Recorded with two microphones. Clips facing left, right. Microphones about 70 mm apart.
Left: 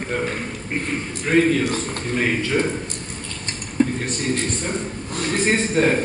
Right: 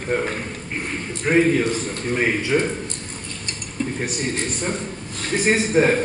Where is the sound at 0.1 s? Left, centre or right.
Centre.